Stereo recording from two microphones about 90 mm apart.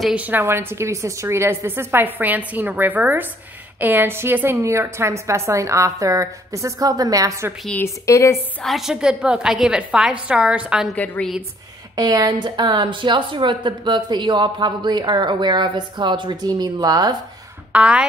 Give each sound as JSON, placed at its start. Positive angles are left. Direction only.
{"t": 0.1, "sound": "a woman's voice", "side_deg": -20}
{"t": 7.8, "sound": "a woman's voice", "side_deg": 35}
{"t": 8.6, "sound": "a woman's voice", "side_deg": -5}
{"t": 11.9, "sound": "a woman's voice", "side_deg": -50}
{"t": 17.7, "sound": "a woman's voice", "side_deg": -10}